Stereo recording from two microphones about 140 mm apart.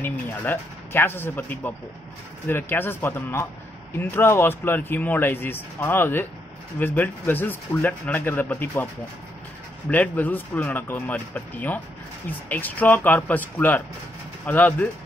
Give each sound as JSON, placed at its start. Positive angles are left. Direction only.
{"t": 0.0, "sound": "speech", "side_deg": 15}
{"t": 9.8, "sound": "speech", "side_deg": 10}